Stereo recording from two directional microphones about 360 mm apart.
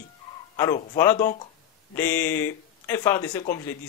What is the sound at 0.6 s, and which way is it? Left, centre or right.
Speech, centre.